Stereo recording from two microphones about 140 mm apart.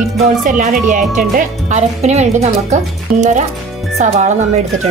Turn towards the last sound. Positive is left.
turn(degrees=-55)  # may be behind; listen again after turning